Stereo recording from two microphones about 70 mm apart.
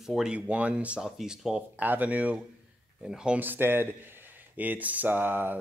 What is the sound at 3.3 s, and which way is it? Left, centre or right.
A man's voice, right.